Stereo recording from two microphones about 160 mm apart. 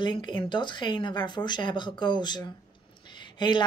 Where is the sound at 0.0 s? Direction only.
30° left (ahead or behind).